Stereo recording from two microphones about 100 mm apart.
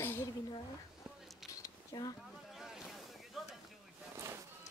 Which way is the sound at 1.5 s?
40° left (ahead or behind).